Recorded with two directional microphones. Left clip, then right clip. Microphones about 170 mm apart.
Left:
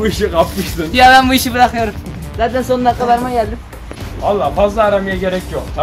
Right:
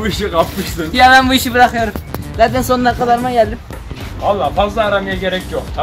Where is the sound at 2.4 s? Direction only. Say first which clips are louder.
Right 2 dB; 70° right (ahead or behind).